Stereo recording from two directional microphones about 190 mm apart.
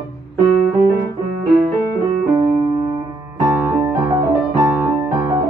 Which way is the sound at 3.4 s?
10° right (ahead or behind).